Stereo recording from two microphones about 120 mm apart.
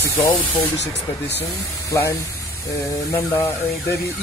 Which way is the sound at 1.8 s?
25° left (ahead or behind).